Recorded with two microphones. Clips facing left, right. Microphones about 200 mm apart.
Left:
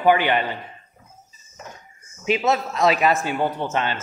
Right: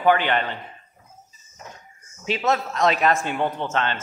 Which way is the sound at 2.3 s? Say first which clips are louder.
Left 2 dB; 5° left (ahead or behind).